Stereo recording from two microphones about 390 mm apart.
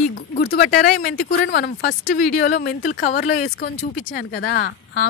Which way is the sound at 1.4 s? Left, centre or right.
Left.